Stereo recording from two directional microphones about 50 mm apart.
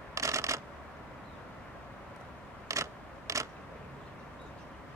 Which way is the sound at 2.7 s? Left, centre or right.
Right.